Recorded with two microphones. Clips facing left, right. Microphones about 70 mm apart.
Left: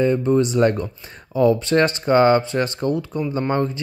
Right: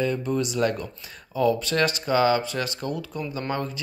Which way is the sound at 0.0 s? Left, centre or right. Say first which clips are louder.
Left 8 dB; left.